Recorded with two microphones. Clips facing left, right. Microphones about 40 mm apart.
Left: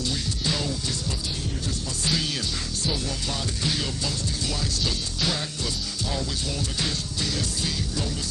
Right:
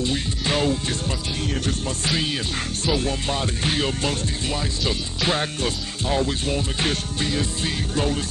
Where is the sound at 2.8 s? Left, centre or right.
Right.